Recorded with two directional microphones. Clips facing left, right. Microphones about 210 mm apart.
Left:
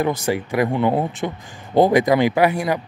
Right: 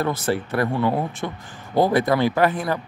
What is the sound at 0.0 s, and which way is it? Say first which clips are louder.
Speech: left 2 dB; 15° left (ahead or behind).